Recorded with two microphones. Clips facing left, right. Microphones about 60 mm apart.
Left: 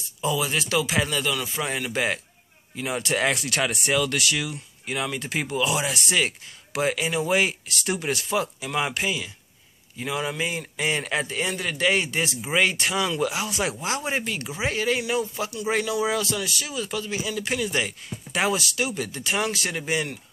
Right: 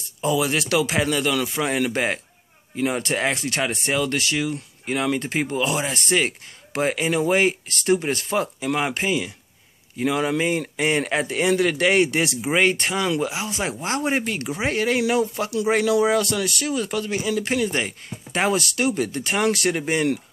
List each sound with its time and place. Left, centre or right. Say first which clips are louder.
0.2 s speech: right 4 dB; right
3.2 s speech: right 1 dB; right
7.9 s speech: right 7 dB; right
8.2 s speech: right 2 dB; right
9.9 s speech: right 6 dB; right
12.4 s speech: right 2 dB; right
13.2 s speech: even; right
13.8 s speech: right 4 dB; right